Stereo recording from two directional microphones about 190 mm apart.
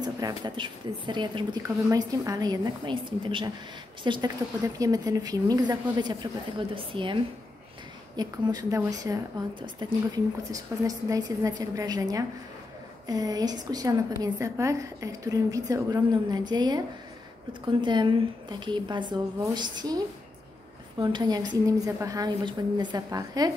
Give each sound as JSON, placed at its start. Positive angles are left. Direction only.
{"t": 0.0, "sound": "a woman's voice", "side_deg": -20}
{"t": 8.2, "sound": "a woman's voice", "side_deg": -20}
{"t": 21.0, "sound": "a woman's voice", "side_deg": -20}